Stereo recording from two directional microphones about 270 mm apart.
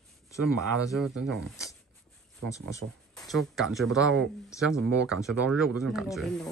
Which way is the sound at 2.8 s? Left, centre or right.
Right.